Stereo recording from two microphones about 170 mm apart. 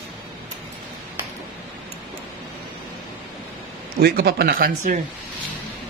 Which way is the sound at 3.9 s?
65° right (ahead or behind).